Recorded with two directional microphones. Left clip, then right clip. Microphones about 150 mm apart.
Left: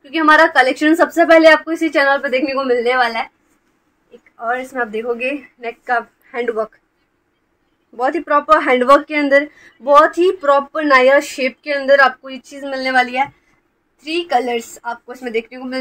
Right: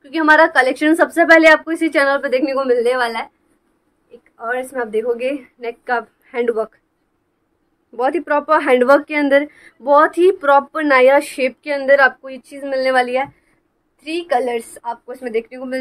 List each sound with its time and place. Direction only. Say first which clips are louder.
0.0 s a sound: left 1 dB; 10° left (ahead or behind)
0.5 s speech: left 1 dB; 15° left (ahead or behind)
1.5 s a woman's voice: even; centre (ahead or behind)
2.2 s speech: even; 20° right (ahead or behind)
4.4 s a woman's voice: left 2 dB; 25° right (ahead or behind)
7.9 s a woman's voice: left 1 dB; 35° right (ahead or behind); by 15.7 s 5° right (ahead or behind)